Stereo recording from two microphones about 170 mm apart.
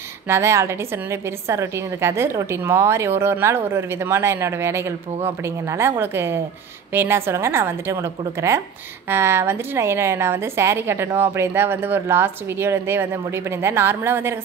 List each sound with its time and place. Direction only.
0.3 s a woman's voice: 15° right (ahead or behind)